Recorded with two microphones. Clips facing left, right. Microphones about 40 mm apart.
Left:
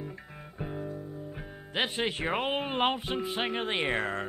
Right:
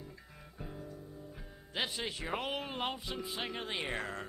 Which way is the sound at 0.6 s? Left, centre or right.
Left.